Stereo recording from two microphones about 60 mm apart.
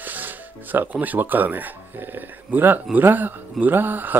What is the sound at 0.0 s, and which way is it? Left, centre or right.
Speech, right.